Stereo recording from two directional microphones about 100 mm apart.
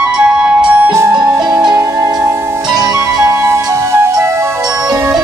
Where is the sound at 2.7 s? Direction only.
40° right (ahead or behind).